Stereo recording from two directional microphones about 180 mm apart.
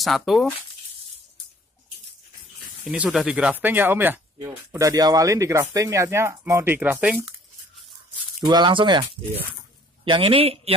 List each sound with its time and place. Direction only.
0.0 s speech: centre (ahead or behind)
2.9 s speech: 5° right (ahead or behind)
8.5 s speech: 25° right (ahead or behind)